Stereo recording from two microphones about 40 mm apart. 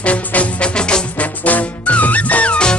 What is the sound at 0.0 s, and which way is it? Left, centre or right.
Music, left.